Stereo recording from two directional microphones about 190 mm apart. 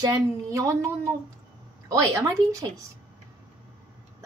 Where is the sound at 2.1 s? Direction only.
15° right (ahead or behind).